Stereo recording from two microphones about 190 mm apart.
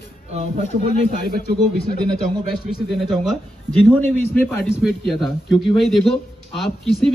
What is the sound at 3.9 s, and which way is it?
Speech, 10° left (ahead or behind).